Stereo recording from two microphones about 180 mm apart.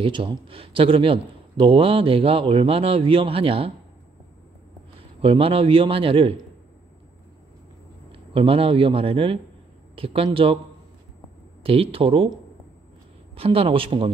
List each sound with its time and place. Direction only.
0.0 s a man's voice: 25° right (ahead or behind)
5.2 s a man's voice: 30° right (ahead or behind)
8.1 s a man's voice: 30° right (ahead or behind)
11.6 s a man's voice: 30° right (ahead or behind)
13.3 s a man's voice: 30° right (ahead or behind)